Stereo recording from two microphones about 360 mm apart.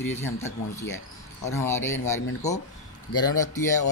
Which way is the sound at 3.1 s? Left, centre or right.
Centre.